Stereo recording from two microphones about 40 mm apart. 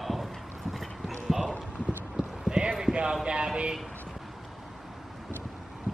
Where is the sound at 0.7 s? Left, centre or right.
Centre.